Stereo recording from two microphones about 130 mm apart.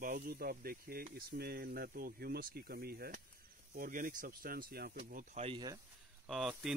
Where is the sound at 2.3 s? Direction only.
90° right.